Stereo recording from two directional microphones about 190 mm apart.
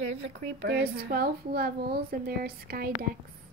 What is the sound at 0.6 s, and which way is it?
A woman's voice, 60° right (ahead or behind).